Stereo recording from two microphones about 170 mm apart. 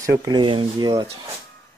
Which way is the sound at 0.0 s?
20° right (ahead or behind).